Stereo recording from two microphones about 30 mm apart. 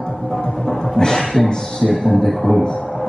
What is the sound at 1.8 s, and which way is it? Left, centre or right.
Speech, centre.